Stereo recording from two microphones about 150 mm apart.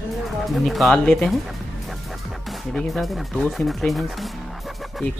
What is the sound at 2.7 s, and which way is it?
Speech, centre (ahead or behind).